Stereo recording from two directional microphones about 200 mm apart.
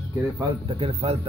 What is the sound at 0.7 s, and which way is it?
Speech, 25° right (ahead or behind).